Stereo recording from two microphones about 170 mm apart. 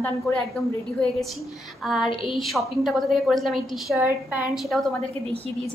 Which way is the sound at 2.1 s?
30° left (ahead or behind).